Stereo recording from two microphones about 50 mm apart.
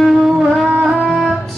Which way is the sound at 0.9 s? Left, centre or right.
Centre.